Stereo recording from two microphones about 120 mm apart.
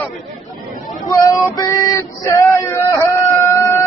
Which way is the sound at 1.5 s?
25° left (ahead or behind).